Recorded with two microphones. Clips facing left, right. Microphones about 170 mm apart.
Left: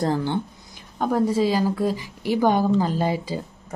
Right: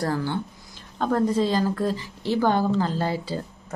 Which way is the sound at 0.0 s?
20° left (ahead or behind).